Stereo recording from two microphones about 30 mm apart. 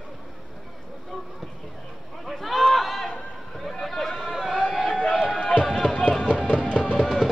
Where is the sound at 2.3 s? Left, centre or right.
Centre.